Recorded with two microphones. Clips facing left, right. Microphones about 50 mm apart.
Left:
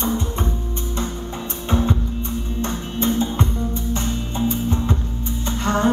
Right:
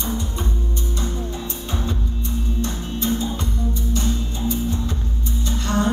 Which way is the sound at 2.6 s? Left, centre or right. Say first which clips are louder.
Left 4 dB; left.